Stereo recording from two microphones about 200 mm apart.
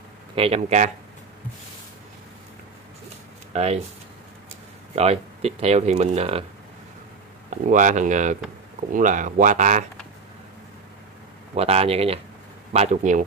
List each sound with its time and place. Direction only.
0.4 s speech: 30° right (ahead or behind)
3.5 s speech: 35° right (ahead or behind)
4.9 s speech: 30° right (ahead or behind)
7.6 s speech: 40° right (ahead or behind)
11.5 s speech: 30° right (ahead or behind)